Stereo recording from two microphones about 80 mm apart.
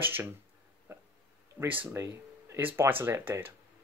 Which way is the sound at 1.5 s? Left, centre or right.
Right.